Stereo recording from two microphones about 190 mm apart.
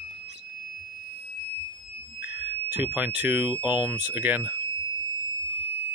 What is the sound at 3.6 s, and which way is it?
Speech, 10° right (ahead or behind).